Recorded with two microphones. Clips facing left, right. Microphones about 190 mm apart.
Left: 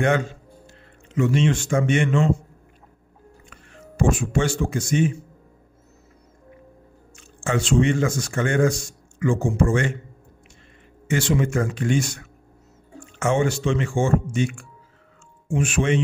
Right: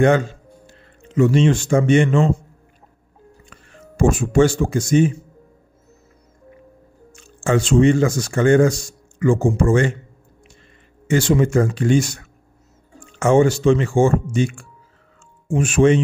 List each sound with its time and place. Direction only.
1.0 s speech: 40° right (ahead or behind)
3.4 s speech: 45° right (ahead or behind)
7.2 s speech: 35° right (ahead or behind)
11.1 s speech: 40° right (ahead or behind)
13.2 s speech: 35° right (ahead or behind)